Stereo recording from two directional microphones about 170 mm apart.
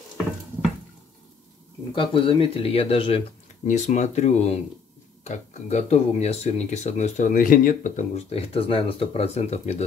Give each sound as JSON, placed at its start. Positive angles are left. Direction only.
{"t": 2.0, "sound": "speech", "side_deg": 30}
{"t": 3.6, "sound": "speech", "side_deg": 45}